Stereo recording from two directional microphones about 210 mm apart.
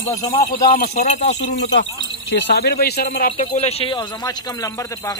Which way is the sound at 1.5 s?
55° left (ahead or behind).